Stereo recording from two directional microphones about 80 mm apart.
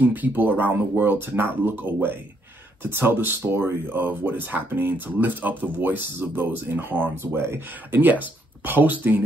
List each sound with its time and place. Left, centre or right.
0.0 s speech: right